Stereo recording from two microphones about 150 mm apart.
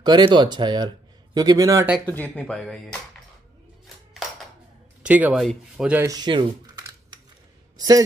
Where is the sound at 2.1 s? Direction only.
10° left (ahead or behind).